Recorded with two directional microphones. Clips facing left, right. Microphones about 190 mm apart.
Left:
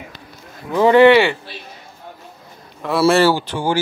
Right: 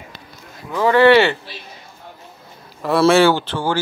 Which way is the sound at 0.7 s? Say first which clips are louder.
Left 3 dB; 20° left (ahead or behind).